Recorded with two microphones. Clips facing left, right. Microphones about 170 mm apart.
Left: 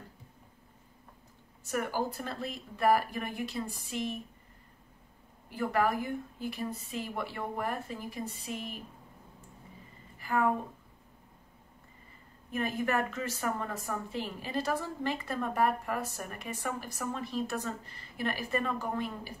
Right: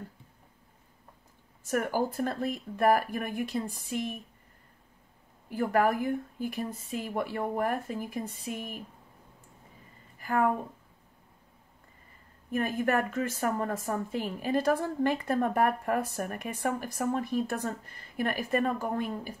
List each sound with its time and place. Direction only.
1.6 s a woman's voice: 50° right (ahead or behind)
5.5 s a woman's voice: 50° right (ahead or behind)
10.1 s a sound: 45° right (ahead or behind)
12.4 s a woman's voice: 45° right (ahead or behind)